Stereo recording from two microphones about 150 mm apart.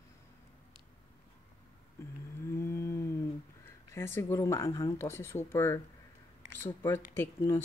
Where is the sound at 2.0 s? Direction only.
20° left (ahead or behind).